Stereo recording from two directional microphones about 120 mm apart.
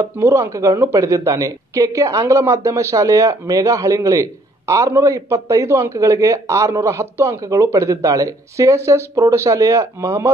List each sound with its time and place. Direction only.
0.0 s speech: 25° right (ahead or behind)